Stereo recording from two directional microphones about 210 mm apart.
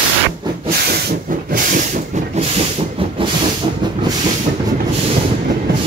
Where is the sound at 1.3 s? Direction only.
40° right (ahead or behind).